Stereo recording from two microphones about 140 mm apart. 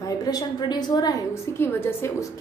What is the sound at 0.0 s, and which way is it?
A woman's voice, 25° left (ahead or behind).